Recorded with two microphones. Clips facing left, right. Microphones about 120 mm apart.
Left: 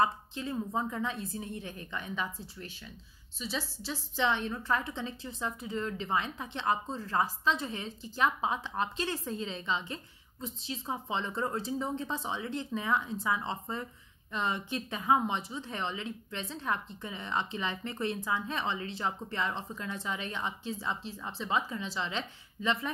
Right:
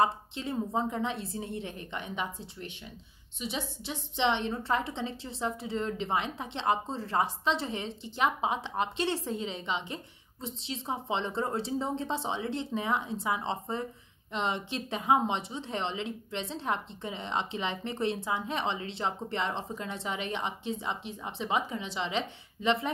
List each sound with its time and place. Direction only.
0.0 s a woman's voice: 25° right (ahead or behind)